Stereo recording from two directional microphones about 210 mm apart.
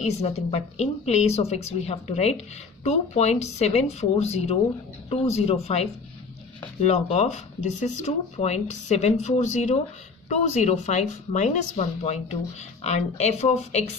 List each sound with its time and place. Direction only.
0.0 s speech: 30° left (ahead or behind)